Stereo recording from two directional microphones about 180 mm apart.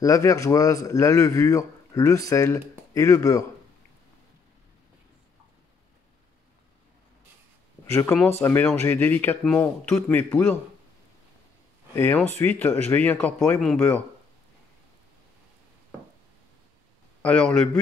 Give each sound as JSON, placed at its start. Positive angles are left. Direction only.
{"t": 0.0, "sound": "a man's voice", "side_deg": 15}
{"t": 7.9, "sound": "a man's voice", "side_deg": 15}
{"t": 11.9, "sound": "a man's voice", "side_deg": 10}
{"t": 17.2, "sound": "a man's voice", "side_deg": 5}